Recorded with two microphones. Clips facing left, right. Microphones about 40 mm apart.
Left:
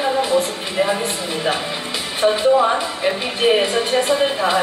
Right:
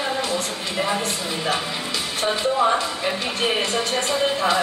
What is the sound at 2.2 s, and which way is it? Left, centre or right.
Speech, left.